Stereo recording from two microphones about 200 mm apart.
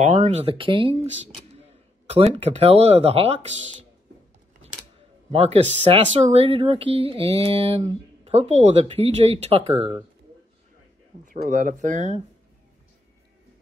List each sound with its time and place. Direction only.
0.0 s speech: 35° right (ahead or behind)
5.3 s speech: 30° right (ahead or behind)
11.2 s speech: 40° right (ahead or behind)